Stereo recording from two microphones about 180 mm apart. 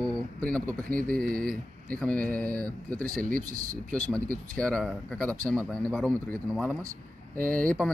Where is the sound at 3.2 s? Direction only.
50° right (ahead or behind).